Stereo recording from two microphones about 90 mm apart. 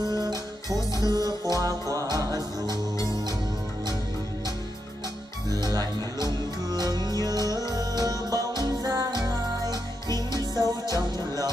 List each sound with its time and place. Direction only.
0.0 s music: 50° right (ahead or behind)
0.7 s music: 40° left (ahead or behind)
1.5 s music: 45° right (ahead or behind)
5.5 s music: 45° right (ahead or behind)